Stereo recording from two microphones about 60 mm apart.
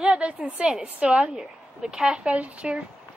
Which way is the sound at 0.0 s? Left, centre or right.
Centre.